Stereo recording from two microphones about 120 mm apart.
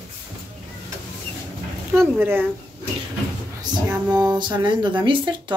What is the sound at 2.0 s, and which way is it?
Speech, 20° right (ahead or behind).